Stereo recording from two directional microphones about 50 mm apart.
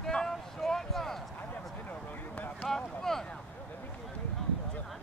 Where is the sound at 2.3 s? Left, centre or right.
Left.